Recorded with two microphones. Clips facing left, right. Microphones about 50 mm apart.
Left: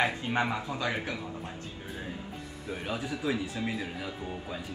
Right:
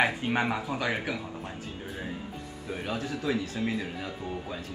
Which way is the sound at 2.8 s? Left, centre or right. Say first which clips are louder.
Right 1 dB; centre.